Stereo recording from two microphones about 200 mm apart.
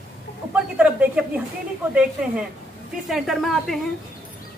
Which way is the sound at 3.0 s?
Centre (ahead or behind).